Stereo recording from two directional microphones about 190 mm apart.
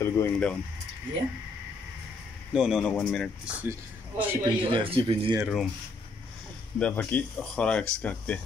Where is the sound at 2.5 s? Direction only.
5° right (ahead or behind).